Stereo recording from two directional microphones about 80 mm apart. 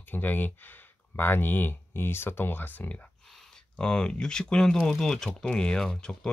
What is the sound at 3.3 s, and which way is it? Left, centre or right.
Speech, centre.